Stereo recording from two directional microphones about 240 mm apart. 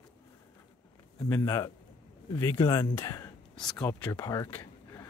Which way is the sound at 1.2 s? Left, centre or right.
Centre.